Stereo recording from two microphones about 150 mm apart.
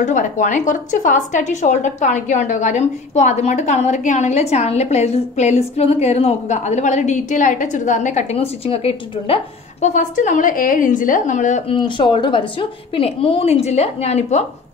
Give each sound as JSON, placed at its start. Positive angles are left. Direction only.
{"t": 0.0, "sound": "a woman's voice", "side_deg": 55}
{"t": 11.7, "sound": "a woman's voice", "side_deg": 35}